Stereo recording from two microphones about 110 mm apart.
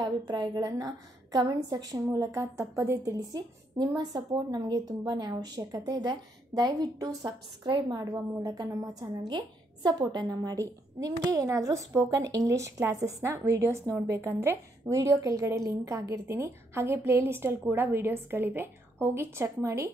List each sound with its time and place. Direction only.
0.0 s a woman's voice: 40° right (ahead or behind)